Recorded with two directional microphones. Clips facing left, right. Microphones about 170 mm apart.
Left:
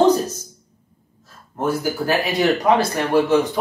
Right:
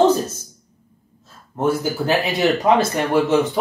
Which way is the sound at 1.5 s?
25° right (ahead or behind).